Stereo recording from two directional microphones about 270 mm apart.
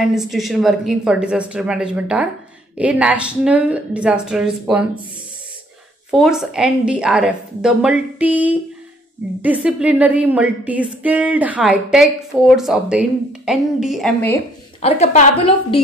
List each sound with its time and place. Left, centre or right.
0.0 s a woman's voice: centre
6.1 s a woman's voice: centre
14.8 s a woman's voice: left